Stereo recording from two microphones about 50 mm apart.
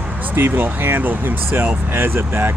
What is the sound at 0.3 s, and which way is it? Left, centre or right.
Speech, right.